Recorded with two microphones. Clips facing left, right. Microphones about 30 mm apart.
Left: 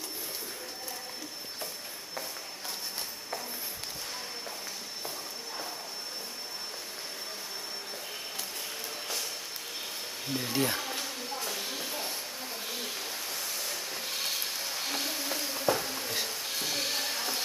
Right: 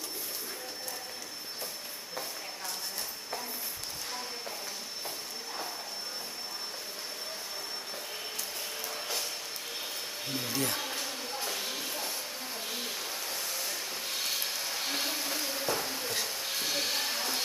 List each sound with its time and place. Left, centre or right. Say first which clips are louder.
10.2 s speech: left 2 dB; centre
10.5 s speech: left 4 dB; centre
10.8 s bee: even; centre
11.3 s a sound: even; centre
12.6 s rub: even; centre